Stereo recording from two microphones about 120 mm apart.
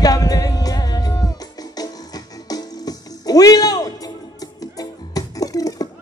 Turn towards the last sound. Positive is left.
turn(degrees=30)  # may be behind; listen again after turning